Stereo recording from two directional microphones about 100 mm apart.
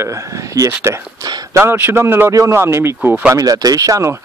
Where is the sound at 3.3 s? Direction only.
40° right (ahead or behind).